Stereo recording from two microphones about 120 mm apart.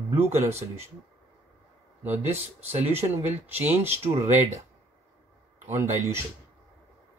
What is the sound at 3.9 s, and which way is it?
Speech, 60° right (ahead or behind).